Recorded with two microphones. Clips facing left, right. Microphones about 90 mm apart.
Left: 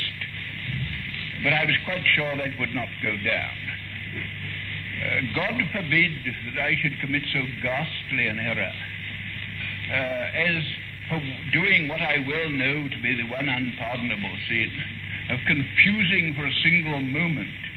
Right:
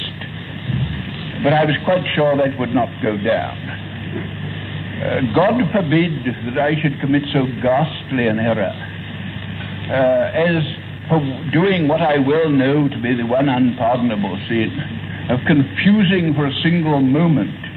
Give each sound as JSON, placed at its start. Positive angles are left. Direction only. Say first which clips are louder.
{"t": 1.4, "sound": "a man's voice", "louder": "right 11 dB", "side_deg": -40}
{"t": 5.0, "sound": "a man's voice", "louder": "right 13 dB", "side_deg": -45}
{"t": 9.8, "sound": "a man's voice", "louder": "right 14 dB", "side_deg": -40}